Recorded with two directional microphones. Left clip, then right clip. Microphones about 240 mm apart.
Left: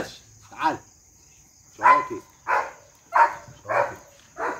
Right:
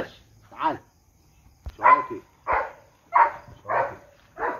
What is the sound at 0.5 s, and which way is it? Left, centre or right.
Cricket, left.